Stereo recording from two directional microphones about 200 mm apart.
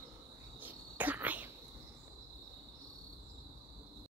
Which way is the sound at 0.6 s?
10° right (ahead or behind).